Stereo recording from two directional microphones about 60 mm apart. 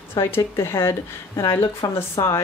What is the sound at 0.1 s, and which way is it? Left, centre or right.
A woman's voice, left.